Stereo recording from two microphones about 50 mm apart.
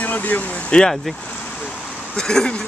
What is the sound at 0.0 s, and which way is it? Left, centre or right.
Speech, left.